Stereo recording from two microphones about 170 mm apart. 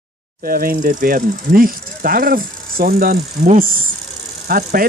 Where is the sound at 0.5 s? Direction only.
55° right (ahead or behind).